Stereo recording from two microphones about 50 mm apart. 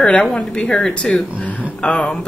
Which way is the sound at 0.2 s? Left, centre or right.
Centre.